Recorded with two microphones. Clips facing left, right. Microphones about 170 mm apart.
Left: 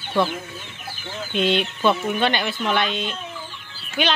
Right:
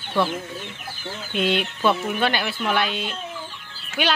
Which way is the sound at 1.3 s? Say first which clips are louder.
Left 2 dB; 5° right (ahead or behind).